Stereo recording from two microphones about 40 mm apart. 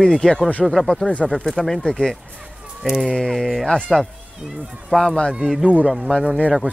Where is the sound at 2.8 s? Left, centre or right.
Centre.